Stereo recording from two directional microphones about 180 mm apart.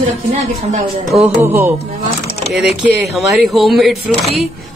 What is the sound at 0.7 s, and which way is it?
Speech, 40° right (ahead or behind).